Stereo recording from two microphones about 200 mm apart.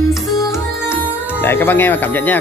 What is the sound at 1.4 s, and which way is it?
Speech, 10° left (ahead or behind).